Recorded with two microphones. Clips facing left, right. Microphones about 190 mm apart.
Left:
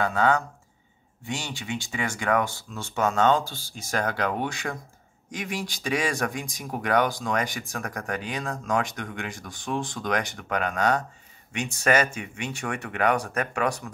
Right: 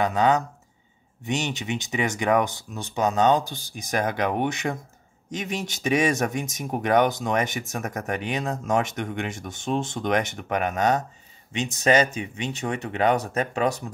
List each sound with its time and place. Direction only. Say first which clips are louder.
0.0 s speech: right 2 dB; 20° right (ahead or behind)